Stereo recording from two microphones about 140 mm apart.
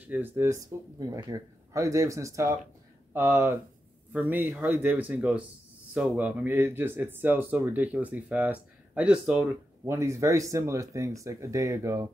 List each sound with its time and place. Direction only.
0.0 s speech: 15° right (ahead or behind)
9.8 s speech: 20° right (ahead or behind)